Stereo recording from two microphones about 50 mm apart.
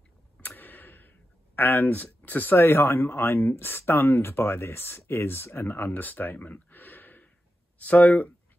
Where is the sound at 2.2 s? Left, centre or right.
Left.